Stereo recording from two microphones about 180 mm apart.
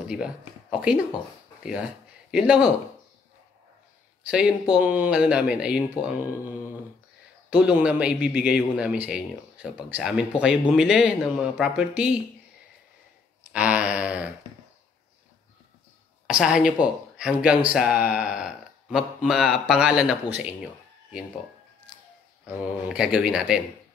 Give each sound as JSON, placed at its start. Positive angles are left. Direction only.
{"t": 0.0, "sound": "speech", "side_deg": -5}
{"t": 4.3, "sound": "a man's voice", "side_deg": -5}
{"t": 7.4, "sound": "a man's voice", "side_deg": -5}
{"t": 13.5, "sound": "a sound", "side_deg": -5}
{"t": 16.3, "sound": "a man's voice", "side_deg": -5}
{"t": 21.9, "sound": "music", "side_deg": 25}
{"t": 22.8, "sound": "a man's voice", "side_deg": -5}